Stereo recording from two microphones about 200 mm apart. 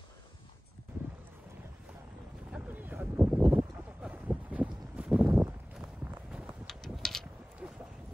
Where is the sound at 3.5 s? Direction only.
10° right (ahead or behind).